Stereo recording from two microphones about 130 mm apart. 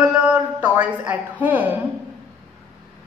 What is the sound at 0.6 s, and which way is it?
Speech, 10° right (ahead or behind).